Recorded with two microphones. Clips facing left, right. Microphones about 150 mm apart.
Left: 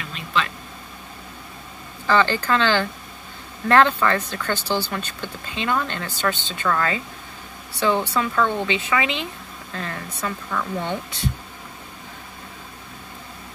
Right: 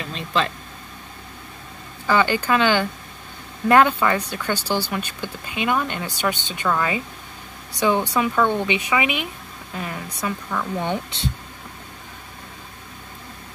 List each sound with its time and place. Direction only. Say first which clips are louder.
0.1 s vehicle: right 2 dB; 35° right (ahead or behind)
2.0 s speech: even; 10° right (ahead or behind)